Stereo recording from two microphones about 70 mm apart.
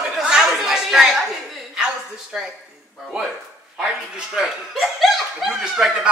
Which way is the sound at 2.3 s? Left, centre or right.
Centre.